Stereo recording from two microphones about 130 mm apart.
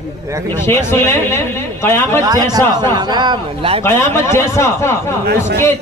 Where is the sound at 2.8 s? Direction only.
35° right (ahead or behind).